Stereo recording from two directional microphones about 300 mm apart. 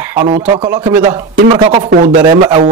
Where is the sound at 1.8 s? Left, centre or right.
Right.